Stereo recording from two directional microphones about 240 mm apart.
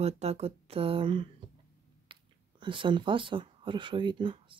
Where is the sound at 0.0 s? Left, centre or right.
Right.